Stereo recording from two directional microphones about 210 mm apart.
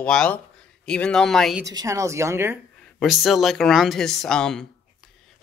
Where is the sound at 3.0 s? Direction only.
Centre (ahead or behind).